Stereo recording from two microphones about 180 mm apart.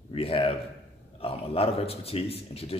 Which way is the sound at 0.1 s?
30° left (ahead or behind).